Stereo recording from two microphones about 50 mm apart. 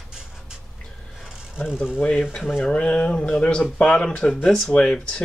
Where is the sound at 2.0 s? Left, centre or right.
Left.